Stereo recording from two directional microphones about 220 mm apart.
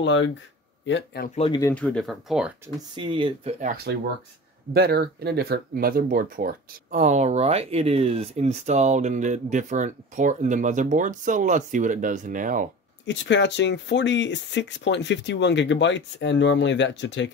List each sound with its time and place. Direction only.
0.0 s speech: 55° left (ahead or behind)
1.3 s speech: 25° left (ahead or behind)
1.6 s speech: 10° left (ahead or behind)
3.0 s speech: 20° right (ahead or behind)
3.6 s speech: 45° right (ahead or behind)
13.0 s speech: 55° left (ahead or behind)